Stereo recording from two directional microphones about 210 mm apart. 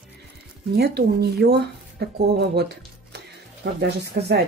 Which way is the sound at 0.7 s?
50° right (ahead or behind).